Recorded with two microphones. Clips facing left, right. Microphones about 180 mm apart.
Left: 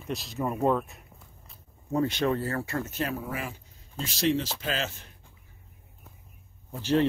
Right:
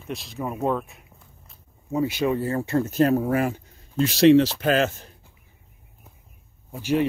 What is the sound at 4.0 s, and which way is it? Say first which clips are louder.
Speech: right 12 dB; 70° right (ahead or behind).